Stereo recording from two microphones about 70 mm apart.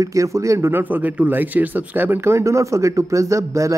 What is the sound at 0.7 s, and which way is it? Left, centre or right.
Speech, right.